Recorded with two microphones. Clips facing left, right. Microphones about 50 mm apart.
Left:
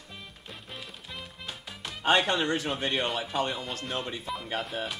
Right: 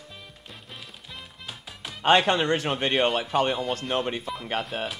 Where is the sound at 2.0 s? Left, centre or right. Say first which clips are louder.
Right 4 dB; right.